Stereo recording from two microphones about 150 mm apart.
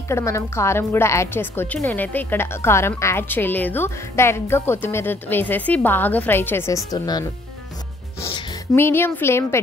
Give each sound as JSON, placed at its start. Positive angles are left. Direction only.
{"t": 0.1, "sound": "a woman's voice", "side_deg": 20}
{"t": 8.7, "sound": "a woman's voice", "side_deg": 15}